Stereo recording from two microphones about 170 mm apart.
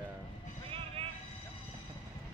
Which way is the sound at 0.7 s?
35° right (ahead or behind).